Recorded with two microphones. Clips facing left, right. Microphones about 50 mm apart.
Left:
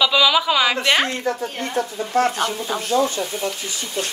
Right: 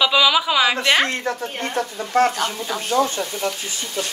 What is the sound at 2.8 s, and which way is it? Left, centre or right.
Speech, right.